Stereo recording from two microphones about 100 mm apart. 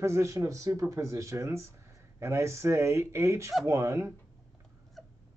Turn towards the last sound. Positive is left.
turn(degrees=0)  # may be behind; listen again after turning